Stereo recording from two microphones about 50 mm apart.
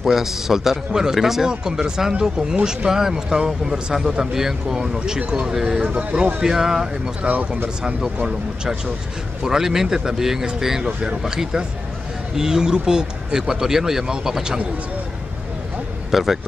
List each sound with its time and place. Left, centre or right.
0.0 s speech: centre
2.9 s speech: centre
7.2 s speech: right
9.4 s speech: centre
16.1 s a man's voice: centre